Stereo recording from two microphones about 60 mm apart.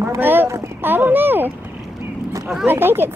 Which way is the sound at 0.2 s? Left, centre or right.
Right.